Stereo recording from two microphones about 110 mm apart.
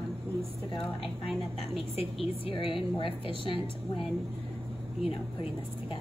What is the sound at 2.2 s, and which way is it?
A woman's voice, 60° left (ahead or behind).